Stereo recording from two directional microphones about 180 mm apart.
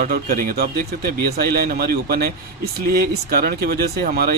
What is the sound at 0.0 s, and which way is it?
Speech, 55° right (ahead or behind).